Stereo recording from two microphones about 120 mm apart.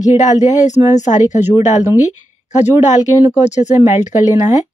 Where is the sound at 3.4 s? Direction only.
75° left (ahead or behind).